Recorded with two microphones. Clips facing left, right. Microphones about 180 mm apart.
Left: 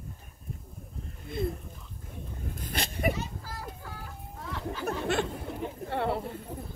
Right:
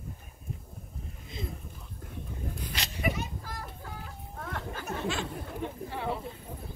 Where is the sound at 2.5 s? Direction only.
50° left (ahead or behind).